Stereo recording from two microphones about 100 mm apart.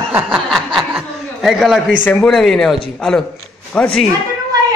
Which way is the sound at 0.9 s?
5° right (ahead or behind).